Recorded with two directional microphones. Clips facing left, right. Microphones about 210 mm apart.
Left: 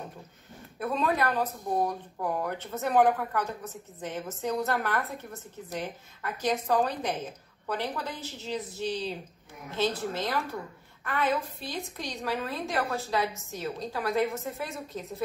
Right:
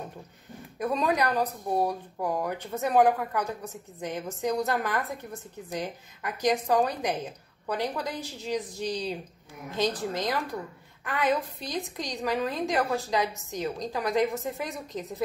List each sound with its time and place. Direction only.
0.7 s a woman's voice: 15° right (ahead or behind)